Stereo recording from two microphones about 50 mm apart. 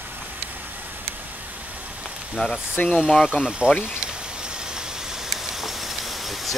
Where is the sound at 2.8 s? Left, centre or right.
Centre.